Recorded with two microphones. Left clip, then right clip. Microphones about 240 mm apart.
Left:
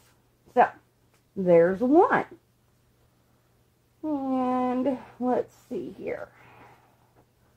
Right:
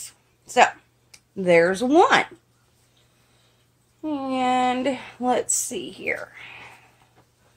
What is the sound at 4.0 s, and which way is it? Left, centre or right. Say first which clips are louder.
A woman's voice: right 3 dB; centre.